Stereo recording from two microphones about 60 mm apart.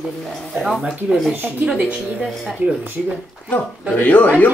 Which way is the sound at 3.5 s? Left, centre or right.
Left.